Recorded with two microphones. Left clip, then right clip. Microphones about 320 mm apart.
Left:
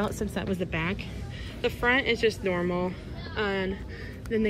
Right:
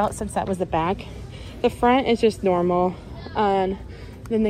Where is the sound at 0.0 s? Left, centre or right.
Centre.